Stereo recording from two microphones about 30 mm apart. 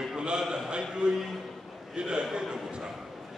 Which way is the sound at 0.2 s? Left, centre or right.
Right.